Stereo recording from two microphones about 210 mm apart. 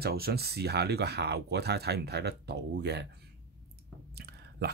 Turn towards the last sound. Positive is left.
turn(degrees=-50)  # may be behind; listen again after turning